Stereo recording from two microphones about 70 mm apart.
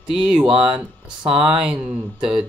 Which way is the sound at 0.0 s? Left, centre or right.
Centre.